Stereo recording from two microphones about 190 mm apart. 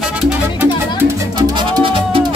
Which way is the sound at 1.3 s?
20° right (ahead or behind).